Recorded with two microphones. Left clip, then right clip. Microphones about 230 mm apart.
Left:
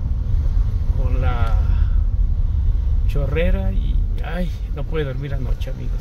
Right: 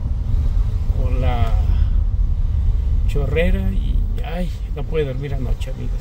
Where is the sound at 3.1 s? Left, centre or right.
Centre.